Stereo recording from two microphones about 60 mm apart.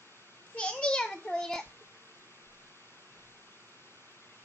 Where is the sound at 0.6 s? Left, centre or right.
Centre.